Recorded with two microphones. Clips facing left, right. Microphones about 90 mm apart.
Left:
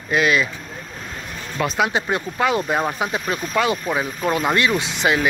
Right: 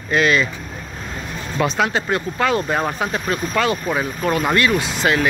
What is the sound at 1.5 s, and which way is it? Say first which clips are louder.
Speech: right 1 dB; 5° left (ahead or behind).